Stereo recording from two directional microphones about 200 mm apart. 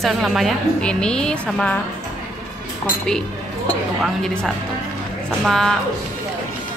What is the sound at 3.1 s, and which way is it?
Speech, 5° left (ahead or behind).